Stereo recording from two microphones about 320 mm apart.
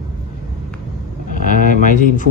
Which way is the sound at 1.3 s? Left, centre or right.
Left.